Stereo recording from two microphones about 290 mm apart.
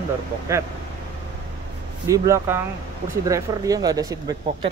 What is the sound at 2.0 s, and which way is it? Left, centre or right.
Speech, centre.